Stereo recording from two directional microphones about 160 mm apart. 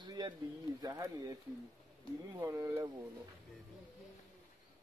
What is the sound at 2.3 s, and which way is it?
Speech, 20° right (ahead or behind).